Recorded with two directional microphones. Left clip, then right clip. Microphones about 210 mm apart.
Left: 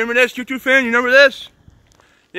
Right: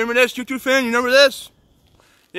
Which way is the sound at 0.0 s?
15° right (ahead or behind).